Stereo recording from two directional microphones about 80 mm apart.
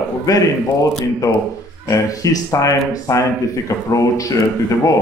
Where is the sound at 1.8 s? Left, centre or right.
Left.